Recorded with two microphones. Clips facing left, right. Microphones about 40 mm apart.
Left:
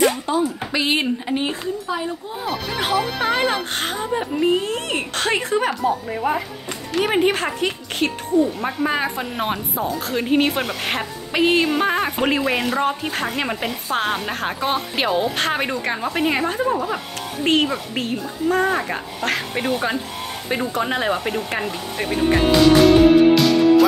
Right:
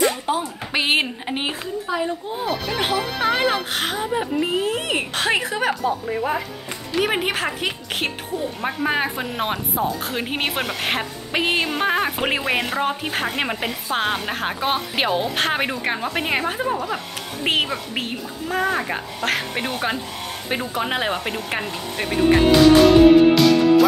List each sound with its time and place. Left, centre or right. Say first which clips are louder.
0.3 s speech: left 2 dB; right
1.9 s speech: right 1 dB; centre
8.0 s speech: left 5 dB; right
8.5 s speech: even; centre
16.7 s speech: left 2 dB; centre
17.4 s speech: left 3 dB; centre
21.5 s music: left 1 dB; centre